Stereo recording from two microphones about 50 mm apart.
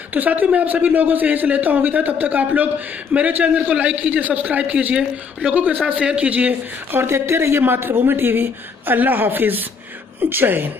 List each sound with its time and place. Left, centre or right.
0.1 s a man's voice: right
6.9 s speech: right